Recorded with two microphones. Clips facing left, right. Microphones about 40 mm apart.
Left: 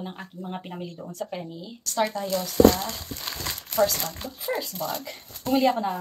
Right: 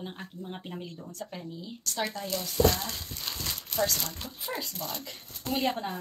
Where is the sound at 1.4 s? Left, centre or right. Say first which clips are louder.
Left 2 dB; left.